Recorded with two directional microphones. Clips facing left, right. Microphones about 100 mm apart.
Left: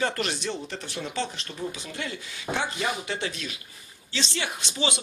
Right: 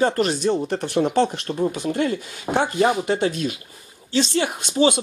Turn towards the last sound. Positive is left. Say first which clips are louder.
# right 11 dB
turn(degrees=-45)  # may be behind; listen again after turning